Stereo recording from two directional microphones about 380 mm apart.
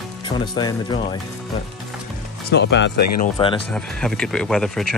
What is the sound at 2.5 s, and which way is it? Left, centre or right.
Speech, left.